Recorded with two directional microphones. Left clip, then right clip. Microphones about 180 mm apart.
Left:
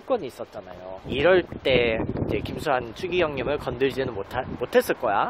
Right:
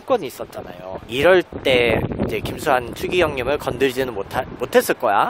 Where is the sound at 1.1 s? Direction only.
20° right (ahead or behind).